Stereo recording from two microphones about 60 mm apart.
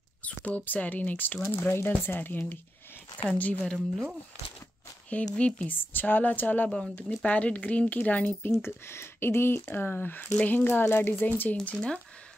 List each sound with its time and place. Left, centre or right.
0.2 s speech: left
5.3 s speech: left
5.9 s speech: left
6.7 s speech: centre
7.2 s speech: left
8.6 s speech: left
11.7 s speech: centre